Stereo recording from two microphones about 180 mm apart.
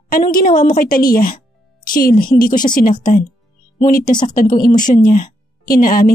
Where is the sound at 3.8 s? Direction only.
55° left (ahead or behind).